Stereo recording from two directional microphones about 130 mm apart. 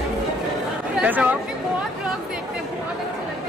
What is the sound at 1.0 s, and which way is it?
Speech, 15° right (ahead or behind).